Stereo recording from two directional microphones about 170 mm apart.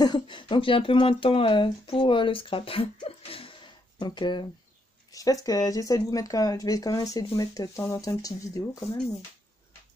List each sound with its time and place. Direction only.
0.0 s speech: 25° left (ahead or behind)